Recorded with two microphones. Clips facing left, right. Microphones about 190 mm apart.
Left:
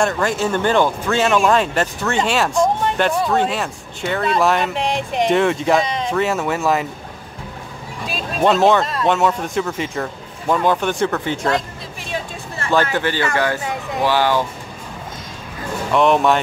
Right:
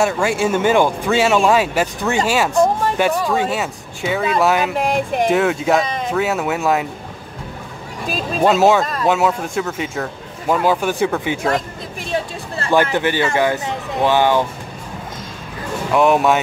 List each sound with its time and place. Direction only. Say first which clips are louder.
0.0 s speech: right 2 dB; 10° right (ahead or behind)
8.4 s speech: right 1 dB; 5° right (ahead or behind)
12.1 s a sound: right 4 dB; 30° right (ahead or behind)
12.8 s speech: right 2 dB; 15° right (ahead or behind)
15.9 s speech: right 1 dB; 5° right (ahead or behind)